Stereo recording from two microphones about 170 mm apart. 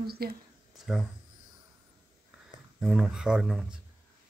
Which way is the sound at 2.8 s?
5° right (ahead or behind).